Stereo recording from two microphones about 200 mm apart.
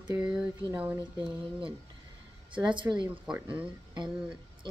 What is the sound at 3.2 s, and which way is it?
Speech, 5° right (ahead or behind).